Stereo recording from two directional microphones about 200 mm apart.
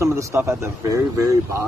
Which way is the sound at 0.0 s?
15° right (ahead or behind).